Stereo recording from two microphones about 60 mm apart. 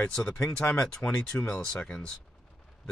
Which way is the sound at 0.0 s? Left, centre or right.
Centre.